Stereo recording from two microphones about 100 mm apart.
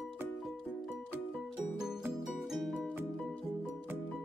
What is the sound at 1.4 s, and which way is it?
Music, 5° right (ahead or behind).